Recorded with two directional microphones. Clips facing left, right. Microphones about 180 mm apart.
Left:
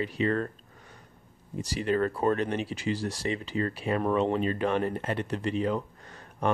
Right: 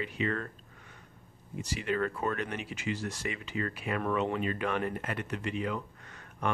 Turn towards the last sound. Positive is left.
turn(degrees=35)  # may be behind; listen again after turning